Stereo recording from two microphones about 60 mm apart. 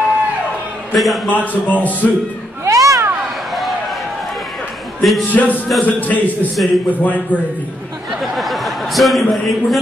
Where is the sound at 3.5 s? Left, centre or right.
Centre.